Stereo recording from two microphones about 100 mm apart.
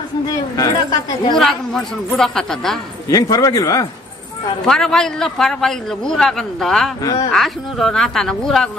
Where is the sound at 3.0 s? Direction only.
35° left (ahead or behind).